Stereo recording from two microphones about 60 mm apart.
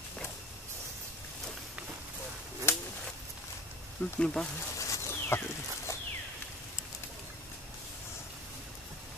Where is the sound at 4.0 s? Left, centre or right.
Centre.